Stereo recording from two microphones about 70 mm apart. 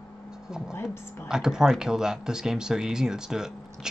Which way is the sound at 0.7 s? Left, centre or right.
Left.